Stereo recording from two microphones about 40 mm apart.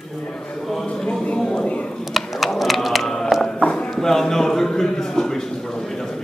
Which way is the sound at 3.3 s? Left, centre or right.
Centre.